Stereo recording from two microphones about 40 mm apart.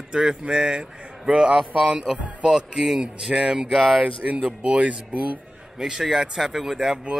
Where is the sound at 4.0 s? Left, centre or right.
Right.